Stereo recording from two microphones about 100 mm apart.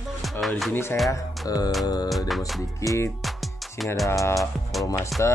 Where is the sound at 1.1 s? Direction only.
40° left (ahead or behind).